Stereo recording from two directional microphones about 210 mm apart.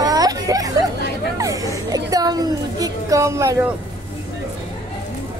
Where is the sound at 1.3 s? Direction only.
15° right (ahead or behind).